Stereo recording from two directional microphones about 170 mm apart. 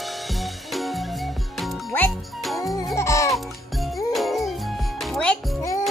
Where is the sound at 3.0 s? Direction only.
20° left (ahead or behind).